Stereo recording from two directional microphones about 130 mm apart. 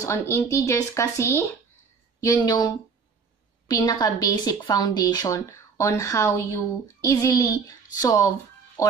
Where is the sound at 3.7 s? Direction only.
30° left (ahead or behind).